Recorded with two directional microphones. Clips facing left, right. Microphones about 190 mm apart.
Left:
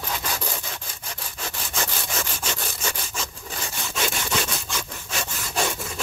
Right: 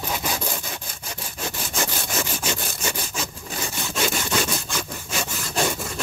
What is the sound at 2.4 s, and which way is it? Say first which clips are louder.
Sawing: right 2 dB; 10° right (ahead or behind).